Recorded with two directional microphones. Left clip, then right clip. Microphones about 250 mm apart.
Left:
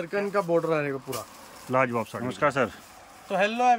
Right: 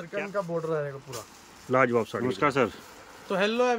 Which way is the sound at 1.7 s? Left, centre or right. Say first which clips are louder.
Right 1 dB; centre.